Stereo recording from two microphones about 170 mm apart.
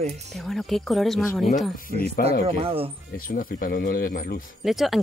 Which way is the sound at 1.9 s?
55° left (ahead or behind).